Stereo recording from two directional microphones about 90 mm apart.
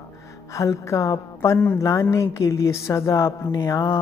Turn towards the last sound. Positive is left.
turn(degrees=35)  # may be behind; listen again after turning